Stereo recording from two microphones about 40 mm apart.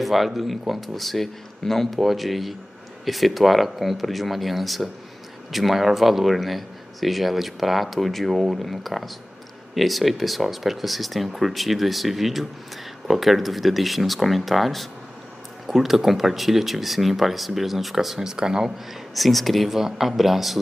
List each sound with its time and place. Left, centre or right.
0.0 s speech: centre
19.1 s speech: centre